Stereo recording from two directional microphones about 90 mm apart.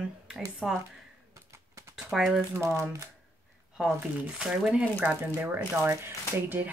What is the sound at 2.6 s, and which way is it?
Speech, 35° right (ahead or behind).